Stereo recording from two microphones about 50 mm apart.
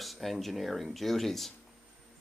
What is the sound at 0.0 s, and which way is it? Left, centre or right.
Speech, centre.